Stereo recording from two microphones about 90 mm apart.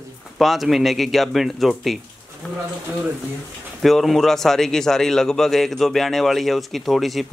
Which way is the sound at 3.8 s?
Centre (ahead or behind).